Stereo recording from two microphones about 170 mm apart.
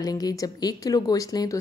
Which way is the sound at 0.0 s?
20° left (ahead or behind).